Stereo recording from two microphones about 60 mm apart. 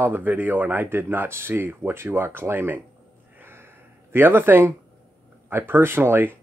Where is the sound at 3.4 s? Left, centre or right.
Right.